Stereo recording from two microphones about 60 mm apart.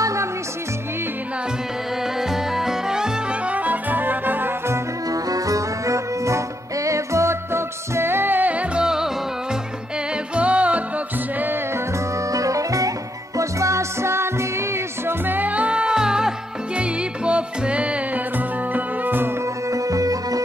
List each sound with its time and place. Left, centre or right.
0.0 s music: right
2.3 s music: centre
3.4 s music: right
5.1 s music: right
8.8 s music: centre
10.3 s music: right
12.3 s music: right
15.0 s music: right
18.7 s music: right
19.7 s music: right